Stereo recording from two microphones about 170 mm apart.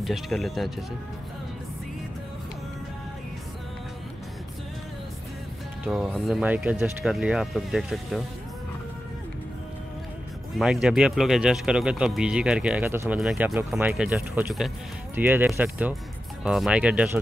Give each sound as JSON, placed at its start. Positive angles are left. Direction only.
{"t": 0.0, "sound": "speech", "side_deg": 0}
{"t": 5.9, "sound": "speech", "side_deg": 0}
{"t": 10.6, "sound": "speech", "side_deg": -5}